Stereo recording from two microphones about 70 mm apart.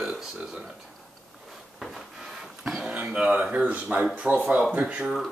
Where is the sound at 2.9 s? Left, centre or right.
Centre.